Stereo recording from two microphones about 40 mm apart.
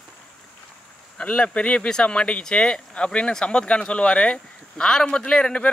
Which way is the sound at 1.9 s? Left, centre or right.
Left.